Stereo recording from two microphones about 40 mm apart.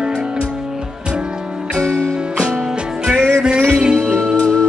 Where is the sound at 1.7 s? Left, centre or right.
Left.